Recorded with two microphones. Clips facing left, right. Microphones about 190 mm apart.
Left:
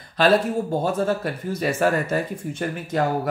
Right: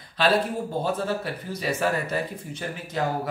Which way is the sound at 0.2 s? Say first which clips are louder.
Left 4 dB; 45° left (ahead or behind).